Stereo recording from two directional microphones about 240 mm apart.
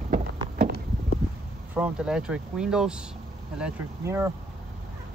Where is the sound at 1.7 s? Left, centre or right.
Centre.